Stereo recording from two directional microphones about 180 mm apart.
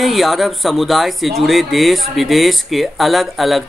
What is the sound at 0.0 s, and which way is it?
Speech, centre (ahead or behind).